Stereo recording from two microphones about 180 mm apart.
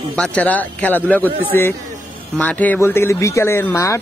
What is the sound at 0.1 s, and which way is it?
Speech, 5° left (ahead or behind).